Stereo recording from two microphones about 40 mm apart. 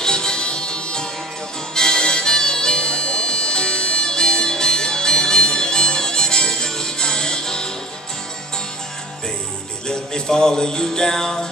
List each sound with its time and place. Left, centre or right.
0.0 s music: centre
9.8 s music: centre